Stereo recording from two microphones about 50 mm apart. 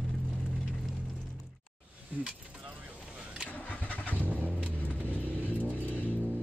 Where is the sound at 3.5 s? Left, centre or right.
Left.